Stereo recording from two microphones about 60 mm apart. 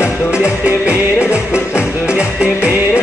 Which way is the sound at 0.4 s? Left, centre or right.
Left.